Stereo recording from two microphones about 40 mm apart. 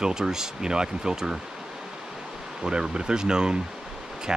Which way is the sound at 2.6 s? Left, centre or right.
Right.